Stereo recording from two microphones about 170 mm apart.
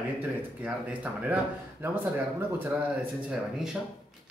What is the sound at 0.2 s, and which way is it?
Speech, 10° right (ahead or behind).